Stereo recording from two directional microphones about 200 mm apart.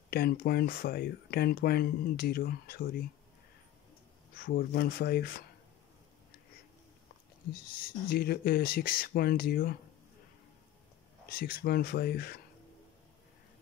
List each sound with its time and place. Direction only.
0.1 s speech: 50° left (ahead or behind)
4.4 s speech: 45° left (ahead or behind)
7.5 s speech: 50° left (ahead or behind)
11.2 s speech: 45° left (ahead or behind)